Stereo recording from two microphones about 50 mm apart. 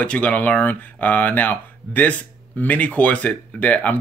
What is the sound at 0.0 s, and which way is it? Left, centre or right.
Speech, left.